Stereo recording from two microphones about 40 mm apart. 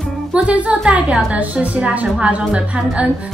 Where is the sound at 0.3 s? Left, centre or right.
Right.